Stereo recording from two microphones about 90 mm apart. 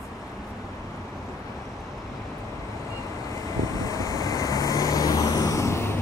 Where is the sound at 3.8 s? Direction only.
40° left (ahead or behind).